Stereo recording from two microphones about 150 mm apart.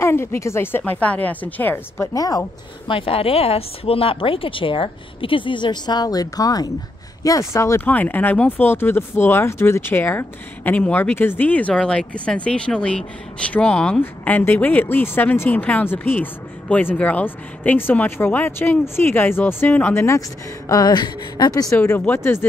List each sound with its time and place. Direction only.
0.0 s speech: 15° left (ahead or behind)
2.1 s speech: 25° left (ahead or behind)
2.9 s speech: 40° left (ahead or behind); by 22.5 s 15° left (ahead or behind)